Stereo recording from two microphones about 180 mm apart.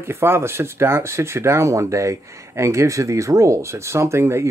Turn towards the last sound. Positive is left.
turn(degrees=-15)  # may be behind; listen again after turning